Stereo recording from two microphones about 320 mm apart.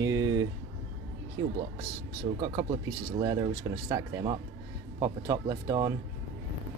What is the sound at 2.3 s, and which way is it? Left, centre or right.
Speech, centre.